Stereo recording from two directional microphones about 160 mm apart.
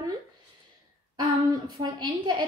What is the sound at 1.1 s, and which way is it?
A woman's voice, 25° right (ahead or behind).